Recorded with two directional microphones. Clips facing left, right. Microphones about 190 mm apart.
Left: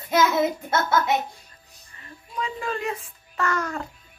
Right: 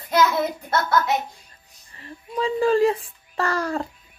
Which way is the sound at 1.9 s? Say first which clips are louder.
Right 6 dB; 30° right (ahead or behind).